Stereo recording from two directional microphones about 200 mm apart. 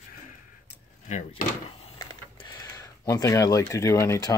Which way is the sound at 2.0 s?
20° left (ahead or behind).